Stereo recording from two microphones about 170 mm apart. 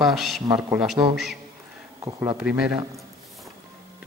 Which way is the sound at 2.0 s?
20° right (ahead or behind).